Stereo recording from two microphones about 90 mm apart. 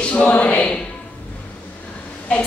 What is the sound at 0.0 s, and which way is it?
Speech, 15° left (ahead or behind).